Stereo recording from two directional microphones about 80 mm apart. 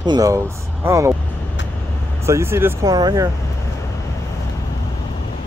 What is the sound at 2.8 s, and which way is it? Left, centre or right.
Speech, right.